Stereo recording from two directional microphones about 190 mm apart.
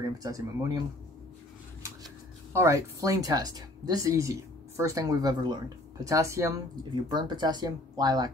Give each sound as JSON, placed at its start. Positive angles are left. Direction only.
{"t": 0.2, "sound": "speech", "side_deg": -20}
{"t": 2.5, "sound": "speech", "side_deg": -15}